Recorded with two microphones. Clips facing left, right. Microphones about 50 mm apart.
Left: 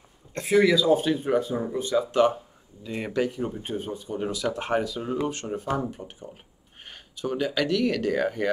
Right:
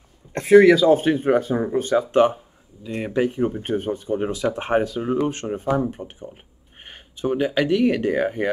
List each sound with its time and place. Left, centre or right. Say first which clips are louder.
0.3 s speech: right 8 dB; right
3.6 s speech: right 7 dB; right
5.7 s speech: right 8 dB; right